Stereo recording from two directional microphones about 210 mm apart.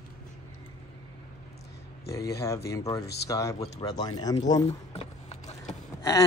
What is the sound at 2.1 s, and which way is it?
A man's voice, 15° left (ahead or behind).